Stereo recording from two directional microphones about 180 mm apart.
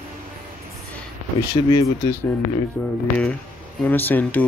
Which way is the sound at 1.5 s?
35° left (ahead or behind).